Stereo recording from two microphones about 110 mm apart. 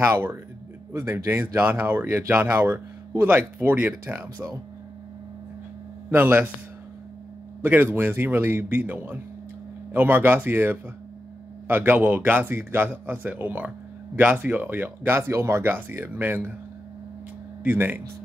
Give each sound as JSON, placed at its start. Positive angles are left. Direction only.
{"t": 0.1, "sound": "speech", "side_deg": -20}
{"t": 6.0, "sound": "a man's voice", "side_deg": -15}
{"t": 7.6, "sound": "a man's voice", "side_deg": -20}
{"t": 17.6, "sound": "a man's voice", "side_deg": -15}